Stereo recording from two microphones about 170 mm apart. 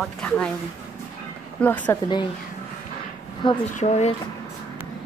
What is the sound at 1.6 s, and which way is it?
Speech, 10° left (ahead or behind).